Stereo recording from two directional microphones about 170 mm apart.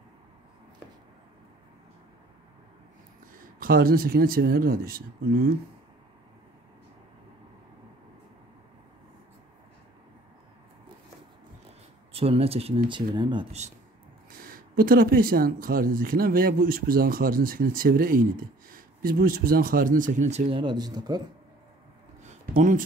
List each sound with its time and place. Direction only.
3.5 s speech: 60° right (ahead or behind)
12.1 s speech: 35° right (ahead or behind)
14.3 s speech: 55° right (ahead or behind); by 21.2 s 25° right (ahead or behind)
22.2 s a sound: 50° right (ahead or behind)